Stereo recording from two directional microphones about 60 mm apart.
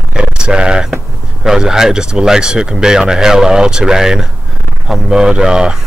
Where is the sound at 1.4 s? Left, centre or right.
Centre.